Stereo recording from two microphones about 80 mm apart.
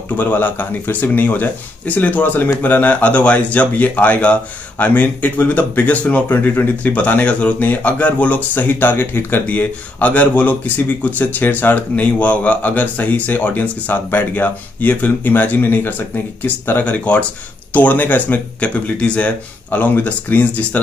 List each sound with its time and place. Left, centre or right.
0.2 s speech: left